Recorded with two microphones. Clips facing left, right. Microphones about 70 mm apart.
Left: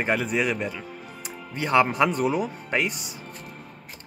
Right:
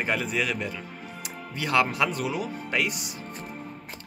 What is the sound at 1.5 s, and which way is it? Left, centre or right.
Speech, left.